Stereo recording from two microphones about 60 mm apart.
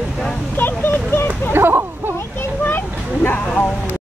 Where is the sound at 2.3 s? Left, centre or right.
Left.